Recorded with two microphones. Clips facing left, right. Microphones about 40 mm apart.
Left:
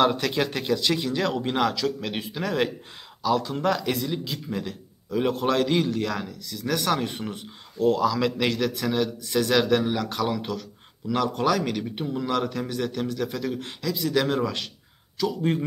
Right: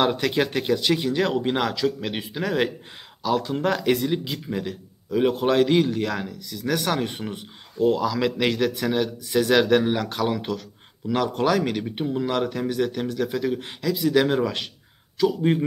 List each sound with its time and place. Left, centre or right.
0.0 s speech: centre